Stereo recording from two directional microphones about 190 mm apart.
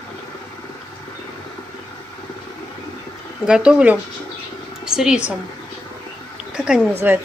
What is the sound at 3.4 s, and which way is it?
A woman's voice, 5° right (ahead or behind).